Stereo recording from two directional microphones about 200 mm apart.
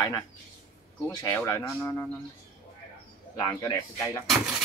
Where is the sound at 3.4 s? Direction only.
20° left (ahead or behind).